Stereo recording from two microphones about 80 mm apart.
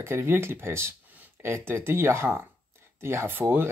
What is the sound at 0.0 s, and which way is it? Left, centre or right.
Speech, right.